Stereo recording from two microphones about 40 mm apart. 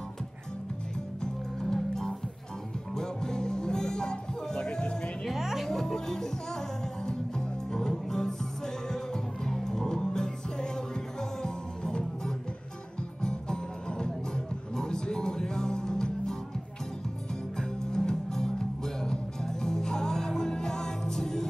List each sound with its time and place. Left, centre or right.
1.2 s music: centre
5.2 s music: centre
5.7 s music: centre
13.2 s music: centre
17.6 s music: centre